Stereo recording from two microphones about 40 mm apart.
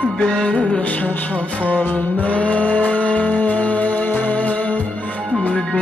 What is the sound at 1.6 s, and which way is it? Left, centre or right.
Music, left.